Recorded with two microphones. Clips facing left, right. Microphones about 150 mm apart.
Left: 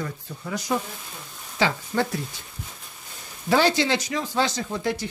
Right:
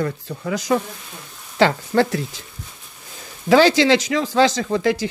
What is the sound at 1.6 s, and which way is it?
Speech, 75° right (ahead or behind).